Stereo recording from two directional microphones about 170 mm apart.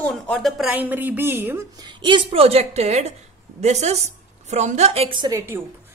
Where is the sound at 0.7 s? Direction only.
10° right (ahead or behind).